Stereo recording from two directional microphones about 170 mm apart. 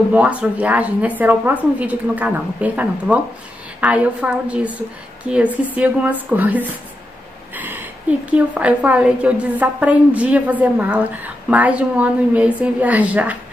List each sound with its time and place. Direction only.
0.1 s a woman's voice: 10° right (ahead or behind)
7.5 s a sound: 10° right (ahead or behind)
8.3 s a woman's voice: 10° right (ahead or behind)